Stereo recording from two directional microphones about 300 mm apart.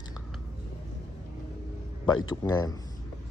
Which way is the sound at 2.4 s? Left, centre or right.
Centre.